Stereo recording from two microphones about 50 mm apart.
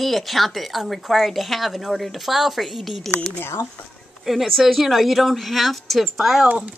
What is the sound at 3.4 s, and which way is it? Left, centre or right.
Speech, left.